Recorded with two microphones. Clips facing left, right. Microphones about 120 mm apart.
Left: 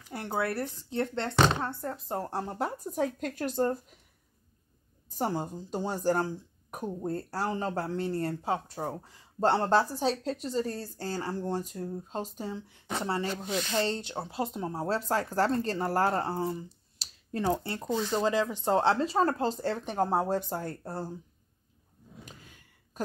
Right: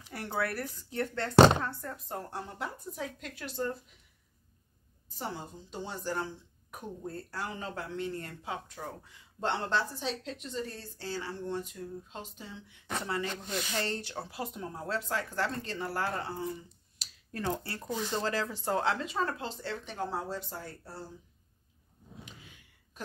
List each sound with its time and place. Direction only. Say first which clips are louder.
0.1 s speech: left 3 dB; 25° left (ahead or behind); by 4.0 s 45° left (ahead or behind)
5.1 s a woman's voice: left 8 dB; 45° left (ahead or behind)
13.3 s speech: left 5 dB; 5° left (ahead or behind)
13.7 s a woman's voice: left 6 dB; 20° left (ahead or behind); by 21.1 s 45° left (ahead or behind)